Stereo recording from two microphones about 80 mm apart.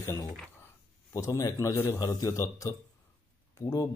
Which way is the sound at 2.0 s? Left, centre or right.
Left.